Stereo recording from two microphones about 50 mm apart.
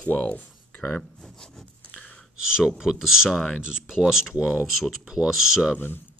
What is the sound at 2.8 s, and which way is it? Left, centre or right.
Speech, centre.